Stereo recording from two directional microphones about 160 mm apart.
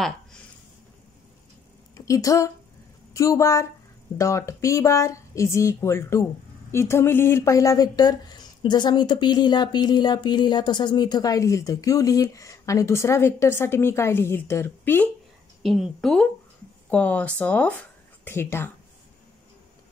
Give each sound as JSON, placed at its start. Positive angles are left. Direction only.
{"t": 2.0, "sound": "speech", "side_deg": 20}
{"t": 15.6, "sound": "a woman's voice", "side_deg": 0}